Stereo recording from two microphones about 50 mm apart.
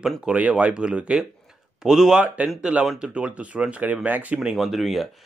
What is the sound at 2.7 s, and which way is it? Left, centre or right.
Speech, right.